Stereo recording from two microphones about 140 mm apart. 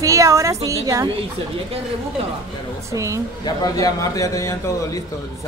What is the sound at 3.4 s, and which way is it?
A man's voice, 25° left (ahead or behind).